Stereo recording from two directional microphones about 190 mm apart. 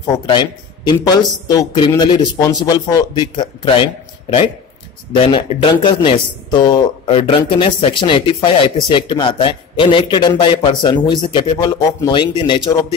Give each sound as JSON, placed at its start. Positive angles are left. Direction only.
{"t": 0.1, "sound": "a man's voice", "side_deg": 25}